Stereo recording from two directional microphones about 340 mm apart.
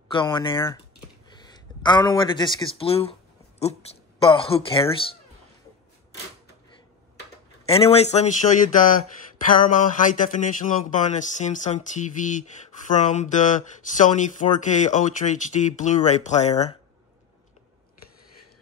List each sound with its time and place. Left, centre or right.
0.1 s speech: centre
7.6 s speech: centre